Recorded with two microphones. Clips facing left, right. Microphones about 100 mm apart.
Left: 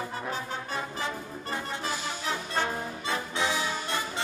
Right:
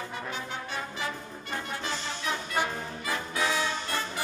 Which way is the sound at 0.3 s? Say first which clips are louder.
Left 2 dB; 40° left (ahead or behind).